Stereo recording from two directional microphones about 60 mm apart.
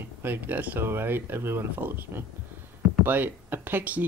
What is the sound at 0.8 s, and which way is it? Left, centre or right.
Speech, right.